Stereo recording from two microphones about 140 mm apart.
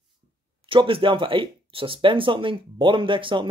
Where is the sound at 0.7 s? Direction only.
40° right (ahead or behind).